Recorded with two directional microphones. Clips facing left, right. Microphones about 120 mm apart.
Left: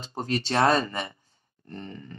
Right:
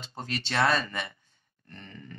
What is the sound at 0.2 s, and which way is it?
Speech, 40° left (ahead or behind).